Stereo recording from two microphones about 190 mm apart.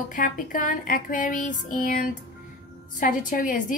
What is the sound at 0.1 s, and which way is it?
A woman's voice, 45° left (ahead or behind).